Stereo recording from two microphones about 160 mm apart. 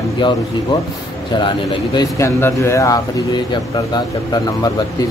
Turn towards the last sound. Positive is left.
turn(degrees=25)  # may be behind; listen again after turning